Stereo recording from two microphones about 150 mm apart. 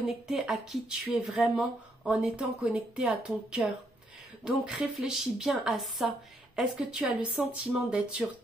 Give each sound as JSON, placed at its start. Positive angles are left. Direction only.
{"t": 0.3, "sound": "a woman's voice", "side_deg": 0}